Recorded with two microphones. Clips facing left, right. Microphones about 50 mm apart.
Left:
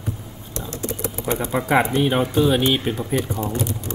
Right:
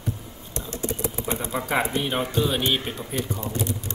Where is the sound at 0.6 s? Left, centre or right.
Right.